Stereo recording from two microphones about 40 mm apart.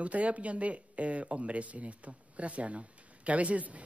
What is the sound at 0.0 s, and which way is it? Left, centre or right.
A man's voice, right.